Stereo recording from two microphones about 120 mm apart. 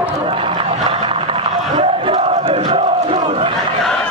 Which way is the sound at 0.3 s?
50° right (ahead or behind).